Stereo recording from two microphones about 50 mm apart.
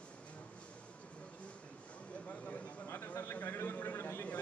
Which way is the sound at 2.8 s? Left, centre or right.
Left.